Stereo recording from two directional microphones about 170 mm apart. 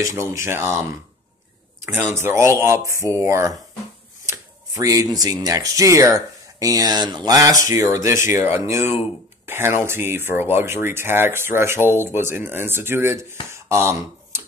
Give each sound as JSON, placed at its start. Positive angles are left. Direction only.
{"t": 0.0, "sound": "speech", "side_deg": -20}
{"t": 2.0, "sound": "speech", "side_deg": -15}